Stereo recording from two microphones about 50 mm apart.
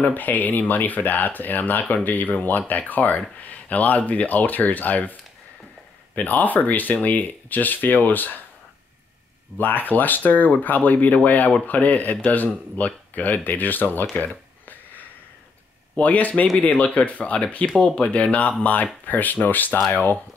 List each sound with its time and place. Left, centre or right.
0.0 s speech: left
6.1 s speech: left
9.6 s speech: left
14.1 s a sound: left
16.0 s speech: left